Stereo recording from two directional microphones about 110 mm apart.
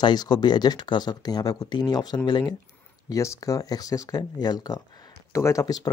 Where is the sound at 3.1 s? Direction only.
30° left (ahead or behind).